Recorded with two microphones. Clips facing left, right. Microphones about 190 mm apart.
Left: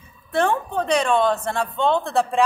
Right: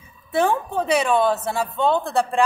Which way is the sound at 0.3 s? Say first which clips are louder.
Right 1 dB; 5° right (ahead or behind).